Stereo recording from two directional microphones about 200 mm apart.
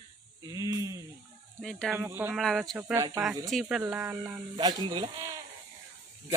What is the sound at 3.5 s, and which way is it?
Speech, centre (ahead or behind).